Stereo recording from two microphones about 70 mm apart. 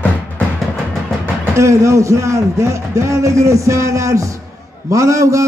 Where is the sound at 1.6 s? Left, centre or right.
Right.